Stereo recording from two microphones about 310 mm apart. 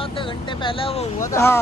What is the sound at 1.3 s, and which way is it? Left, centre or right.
Speech, centre.